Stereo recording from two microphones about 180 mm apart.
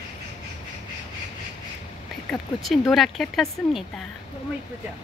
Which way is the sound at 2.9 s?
Centre (ahead or behind).